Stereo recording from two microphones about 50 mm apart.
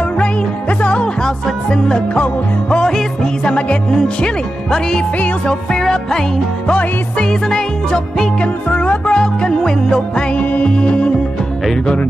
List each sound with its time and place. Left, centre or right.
0.2 s music: left
6.7 s music: left
7.4 s music: centre
8.4 s music: left
9.1 s music: centre
10.3 s music: left